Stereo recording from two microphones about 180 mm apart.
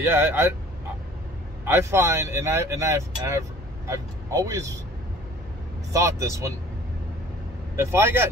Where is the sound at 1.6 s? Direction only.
15° right (ahead or behind).